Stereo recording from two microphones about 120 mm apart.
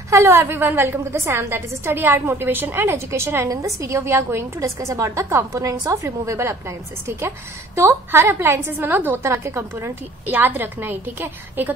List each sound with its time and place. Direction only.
0.1 s a woman's voice: 25° right (ahead or behind)